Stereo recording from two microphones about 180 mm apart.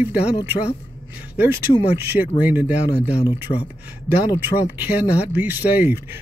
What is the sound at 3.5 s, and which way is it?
Speech, 30° left (ahead or behind).